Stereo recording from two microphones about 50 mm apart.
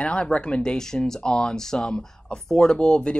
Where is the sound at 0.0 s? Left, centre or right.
Left.